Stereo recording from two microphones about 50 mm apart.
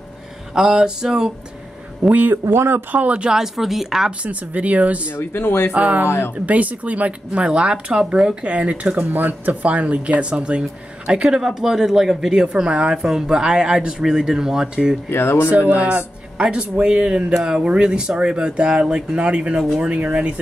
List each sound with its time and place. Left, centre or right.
0.6 s speech: centre
2.0 s a man's voice: right
2.4 s speech: right
2.9 s speech: right
3.3 s a woman's voice: centre
4.2 s speech: right
5.1 s speech: left
5.7 s speech: right
6.0 s speech: left
6.4 s speech: right; by 14.7 s centre
15.0 s speech: left
15.7 s speech: right